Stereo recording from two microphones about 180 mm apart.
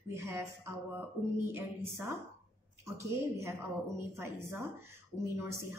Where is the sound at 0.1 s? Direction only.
15° right (ahead or behind).